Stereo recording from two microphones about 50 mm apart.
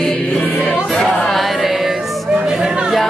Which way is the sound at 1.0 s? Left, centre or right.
Centre.